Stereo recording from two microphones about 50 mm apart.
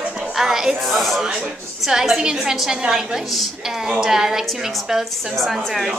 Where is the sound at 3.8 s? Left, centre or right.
Centre.